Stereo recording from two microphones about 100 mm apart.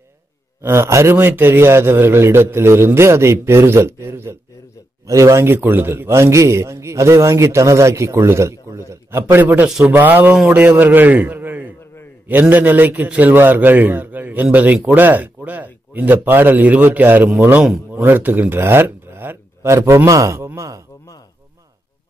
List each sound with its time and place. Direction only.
0.6 s a man's voice: 25° right (ahead or behind)